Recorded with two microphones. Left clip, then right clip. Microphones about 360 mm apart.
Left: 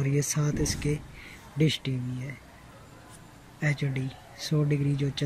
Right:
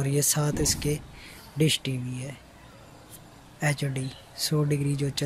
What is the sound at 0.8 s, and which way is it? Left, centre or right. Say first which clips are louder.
Speech: right 2 dB; right.